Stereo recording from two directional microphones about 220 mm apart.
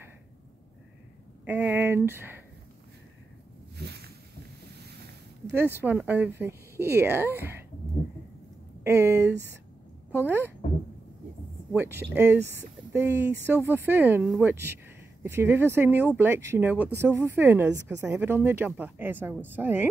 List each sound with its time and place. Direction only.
1.4 s speech: 10° right (ahead or behind)
3.7 s a sound: 45° right (ahead or behind)
5.5 s speech: 10° right (ahead or behind)
8.8 s speech: 10° right (ahead or behind)
11.7 s speech: 10° right (ahead or behind)